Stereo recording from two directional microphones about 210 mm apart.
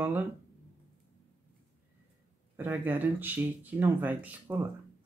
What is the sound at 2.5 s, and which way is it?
Speech, 10° right (ahead or behind).